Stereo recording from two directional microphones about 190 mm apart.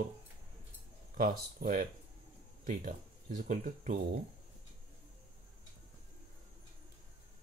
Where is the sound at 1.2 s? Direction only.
45° right (ahead or behind).